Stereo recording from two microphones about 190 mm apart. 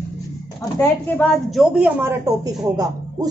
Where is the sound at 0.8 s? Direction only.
10° left (ahead or behind); by 3.3 s 20° right (ahead or behind).